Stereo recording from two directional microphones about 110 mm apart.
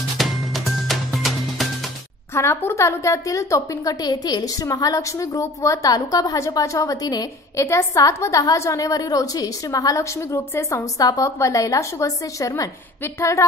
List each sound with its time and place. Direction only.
0.2 s music: centre (ahead or behind)
2.3 s a woman's voice: 20° left (ahead or behind)